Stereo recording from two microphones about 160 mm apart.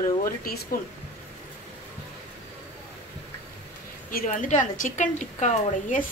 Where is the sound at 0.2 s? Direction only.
65° left (ahead or behind).